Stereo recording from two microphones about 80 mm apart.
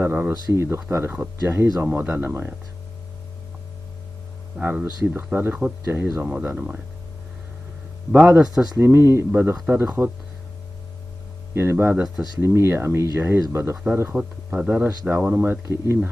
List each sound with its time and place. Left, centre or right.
0.0 s speech: right
4.6 s speech: centre
8.1 s speech: centre
8.7 s speech: right
11.5 s speech: right
14.1 s speech: centre
15.6 s speech: right